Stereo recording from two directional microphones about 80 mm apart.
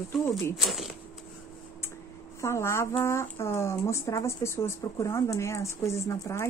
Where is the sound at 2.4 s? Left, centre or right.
Left.